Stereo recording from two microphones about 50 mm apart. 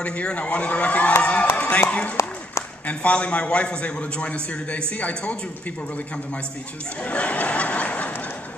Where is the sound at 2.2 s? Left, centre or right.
Left.